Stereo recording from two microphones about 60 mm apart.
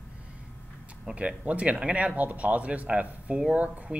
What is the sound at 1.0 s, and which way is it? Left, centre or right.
Speech, right.